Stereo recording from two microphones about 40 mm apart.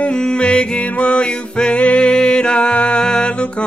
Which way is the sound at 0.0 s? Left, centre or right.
Left.